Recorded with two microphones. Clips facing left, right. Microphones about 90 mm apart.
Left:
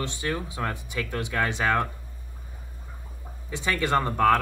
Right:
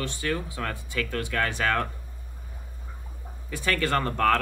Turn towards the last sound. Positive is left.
turn(degrees=15)  # may be behind; listen again after turning